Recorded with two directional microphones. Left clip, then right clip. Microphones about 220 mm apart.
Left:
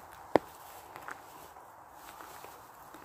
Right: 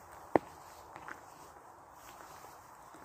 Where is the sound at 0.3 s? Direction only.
15° left (ahead or behind).